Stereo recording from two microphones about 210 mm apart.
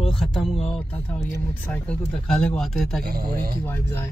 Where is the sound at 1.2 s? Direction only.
50° right (ahead or behind).